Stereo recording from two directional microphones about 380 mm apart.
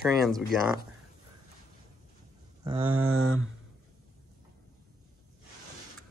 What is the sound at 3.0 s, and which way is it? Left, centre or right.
Mantra, right.